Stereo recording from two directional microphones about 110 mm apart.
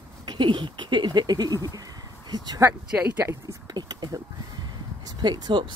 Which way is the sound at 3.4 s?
40° right (ahead or behind).